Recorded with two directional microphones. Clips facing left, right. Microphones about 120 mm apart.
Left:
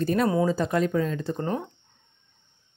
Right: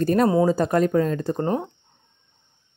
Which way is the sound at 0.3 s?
30° right (ahead or behind).